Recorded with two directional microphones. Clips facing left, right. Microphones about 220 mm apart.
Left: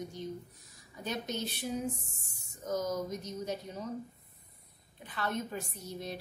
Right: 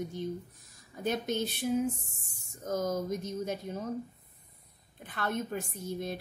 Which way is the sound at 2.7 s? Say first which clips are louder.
Right 2 dB; 50° right (ahead or behind).